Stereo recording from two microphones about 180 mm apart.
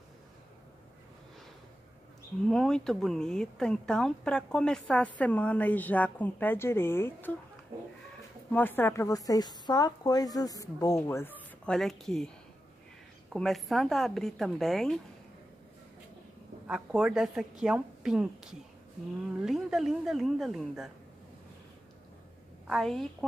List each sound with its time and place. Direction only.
2.4 s a woman's voice: 5° left (ahead or behind)
8.5 s a woman's voice: 10° left (ahead or behind)
13.3 s speech: centre (ahead or behind)
16.6 s speech: 5° right (ahead or behind)
22.7 s speech: centre (ahead or behind)